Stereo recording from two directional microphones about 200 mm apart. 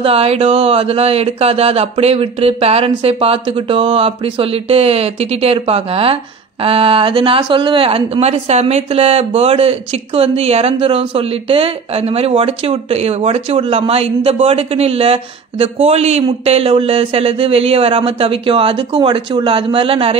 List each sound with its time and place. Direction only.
0.0 s speech: 30° right (ahead or behind)